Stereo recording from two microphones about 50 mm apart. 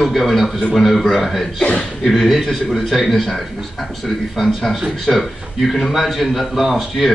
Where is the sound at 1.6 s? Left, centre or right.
Centre.